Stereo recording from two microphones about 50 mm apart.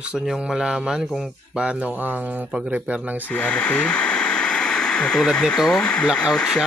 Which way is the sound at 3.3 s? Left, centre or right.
Centre.